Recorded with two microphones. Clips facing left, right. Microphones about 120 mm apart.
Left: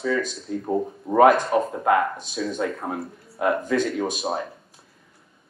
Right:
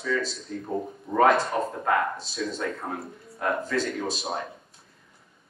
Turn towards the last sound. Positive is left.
turn(degrees=20)  # may be behind; listen again after turning